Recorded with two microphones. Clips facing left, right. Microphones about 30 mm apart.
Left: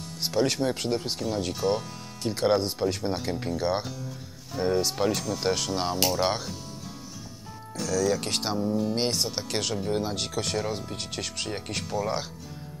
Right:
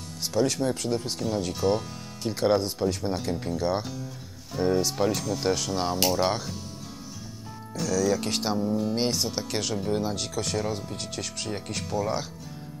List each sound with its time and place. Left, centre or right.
0.2 s speech: left
1.5 s speech: centre; by 3.8 s left
4.6 s speech: centre
7.7 s speech: centre
8.6 s speech: centre
8.9 s speech: centre